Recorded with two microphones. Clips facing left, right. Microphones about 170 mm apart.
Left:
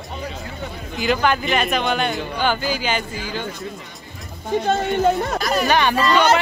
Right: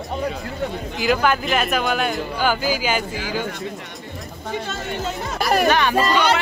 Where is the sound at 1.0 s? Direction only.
5° right (ahead or behind).